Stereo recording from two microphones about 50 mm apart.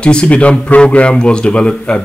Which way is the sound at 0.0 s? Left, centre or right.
Left.